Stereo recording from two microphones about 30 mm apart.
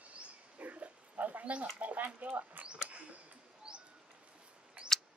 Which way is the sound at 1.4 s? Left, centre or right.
Right.